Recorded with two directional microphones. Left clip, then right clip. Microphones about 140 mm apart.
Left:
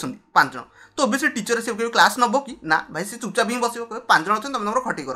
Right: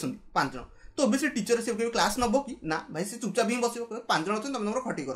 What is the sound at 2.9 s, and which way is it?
Speech, 10° right (ahead or behind).